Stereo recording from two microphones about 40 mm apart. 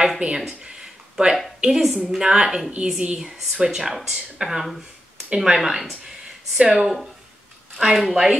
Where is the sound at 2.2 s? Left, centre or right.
Right.